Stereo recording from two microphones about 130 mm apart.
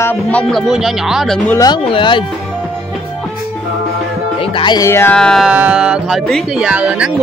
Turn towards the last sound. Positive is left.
turn(degrees=-10)  # may be behind; listen again after turning